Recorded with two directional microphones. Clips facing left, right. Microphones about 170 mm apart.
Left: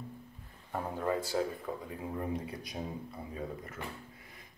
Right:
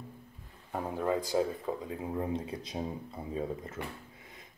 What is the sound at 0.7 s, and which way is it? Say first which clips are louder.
Speech: right 2 dB; 15° right (ahead or behind).